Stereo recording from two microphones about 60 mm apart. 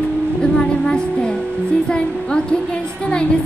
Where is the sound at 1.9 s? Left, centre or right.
Centre.